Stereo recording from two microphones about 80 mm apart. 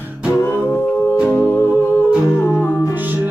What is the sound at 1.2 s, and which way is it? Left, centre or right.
Music, left.